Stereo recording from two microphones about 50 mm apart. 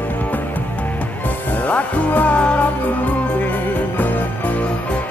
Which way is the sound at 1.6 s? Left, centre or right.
Left.